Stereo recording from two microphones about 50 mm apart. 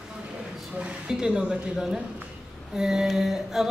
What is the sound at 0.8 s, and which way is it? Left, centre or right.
A woman's voice, centre.